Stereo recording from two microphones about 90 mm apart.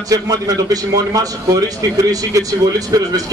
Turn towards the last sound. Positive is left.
turn(degrees=-40)  # may be behind; listen again after turning